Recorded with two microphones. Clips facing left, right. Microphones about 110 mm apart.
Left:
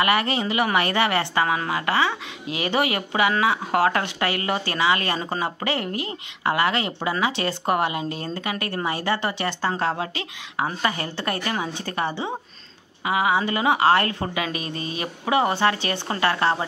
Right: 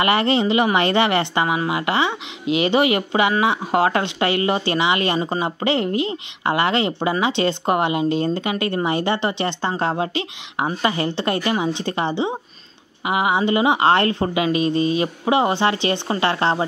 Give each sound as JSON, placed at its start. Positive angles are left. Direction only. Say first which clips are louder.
{"t": 0.0, "sound": "a woman's voice", "louder": "right 4 dB", "side_deg": -25}